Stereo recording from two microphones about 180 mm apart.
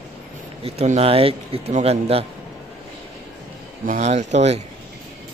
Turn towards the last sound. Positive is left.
turn(degrees=-40)  # may be behind; listen again after turning